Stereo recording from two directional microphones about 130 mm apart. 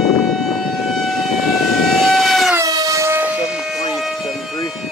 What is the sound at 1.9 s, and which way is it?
Train, centre (ahead or behind).